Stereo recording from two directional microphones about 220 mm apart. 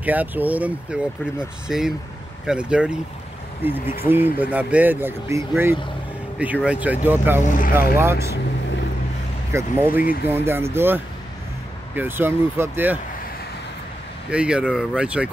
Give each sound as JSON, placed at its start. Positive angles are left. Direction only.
{"t": 0.0, "sound": "speech", "side_deg": -5}
{"t": 4.1, "sound": "speech", "side_deg": -10}
{"t": 7.4, "sound": "speech", "side_deg": 35}
{"t": 7.9, "sound": "speech", "side_deg": -10}
{"t": 9.5, "sound": "speech", "side_deg": -10}
{"t": 14.3, "sound": "speech", "side_deg": -5}